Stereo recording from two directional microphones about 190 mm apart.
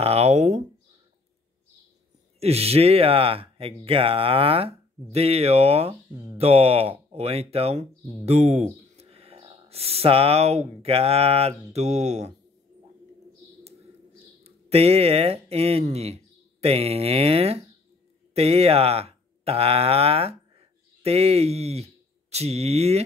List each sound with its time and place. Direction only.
0.0 s a sound: 35° right (ahead or behind)
2.4 s speech: 30° right (ahead or behind)
14.4 s speech: 30° right (ahead or behind)